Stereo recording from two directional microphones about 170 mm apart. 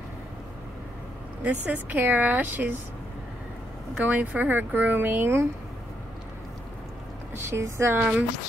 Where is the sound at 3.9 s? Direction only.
10° right (ahead or behind).